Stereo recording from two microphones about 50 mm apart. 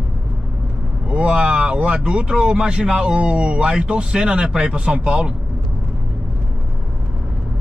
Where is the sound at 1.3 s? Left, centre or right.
Right.